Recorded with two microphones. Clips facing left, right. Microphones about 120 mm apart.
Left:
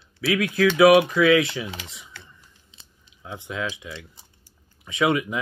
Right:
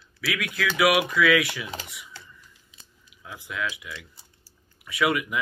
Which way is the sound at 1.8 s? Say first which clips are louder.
Right 1 dB; 25° left (ahead or behind).